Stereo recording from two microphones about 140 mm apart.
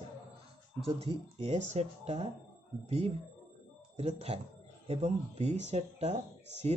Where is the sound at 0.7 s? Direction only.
45° right (ahead or behind).